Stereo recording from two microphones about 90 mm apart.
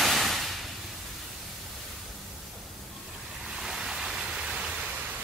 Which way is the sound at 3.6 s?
5° right (ahead or behind).